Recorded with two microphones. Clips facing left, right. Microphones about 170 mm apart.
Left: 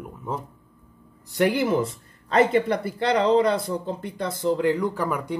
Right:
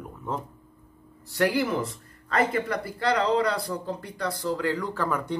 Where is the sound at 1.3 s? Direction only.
20° left (ahead or behind).